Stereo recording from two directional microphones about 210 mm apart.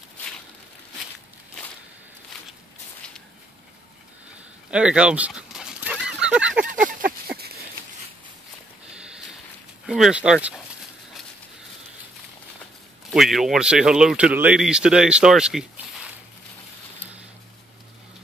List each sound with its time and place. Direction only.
4.6 s dog: 5° right (ahead or behind)
6.2 s honk: 5° right (ahead or behind)
6.6 s a sound: 40° right (ahead or behind)
9.8 s speech: 5° right (ahead or behind)
13.1 s speech: centre (ahead or behind)